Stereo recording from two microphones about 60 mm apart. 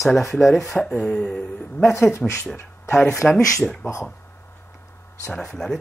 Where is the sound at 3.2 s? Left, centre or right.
Centre.